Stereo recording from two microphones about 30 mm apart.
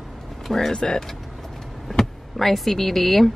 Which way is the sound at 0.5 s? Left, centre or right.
Centre.